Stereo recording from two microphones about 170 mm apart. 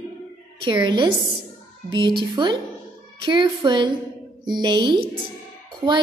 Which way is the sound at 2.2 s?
30° right (ahead or behind).